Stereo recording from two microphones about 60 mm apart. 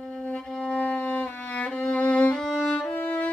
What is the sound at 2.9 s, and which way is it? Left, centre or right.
Music, left.